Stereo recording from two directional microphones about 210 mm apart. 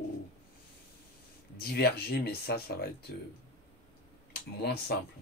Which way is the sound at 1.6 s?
50° left (ahead or behind).